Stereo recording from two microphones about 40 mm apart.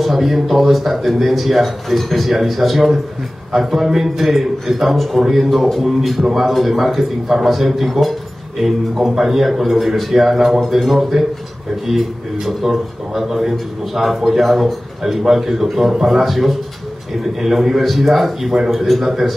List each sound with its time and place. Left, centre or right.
0.0 s a man's voice: centre